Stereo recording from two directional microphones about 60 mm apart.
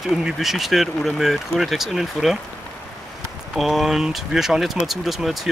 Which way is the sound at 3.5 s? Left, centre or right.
Centre.